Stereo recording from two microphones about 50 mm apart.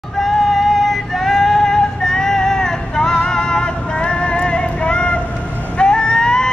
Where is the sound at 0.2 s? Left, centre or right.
Centre; by 5.2 s left.